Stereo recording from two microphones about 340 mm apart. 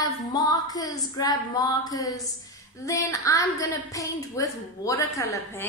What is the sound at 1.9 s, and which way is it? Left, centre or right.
A woman's voice, centre.